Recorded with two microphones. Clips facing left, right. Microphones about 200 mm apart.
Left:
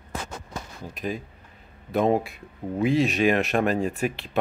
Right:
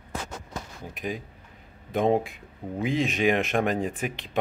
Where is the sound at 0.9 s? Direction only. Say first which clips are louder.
Left 2 dB; 15° right (ahead or behind).